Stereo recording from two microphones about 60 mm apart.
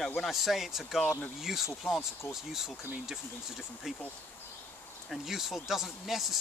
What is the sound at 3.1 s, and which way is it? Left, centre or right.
Speech, centre.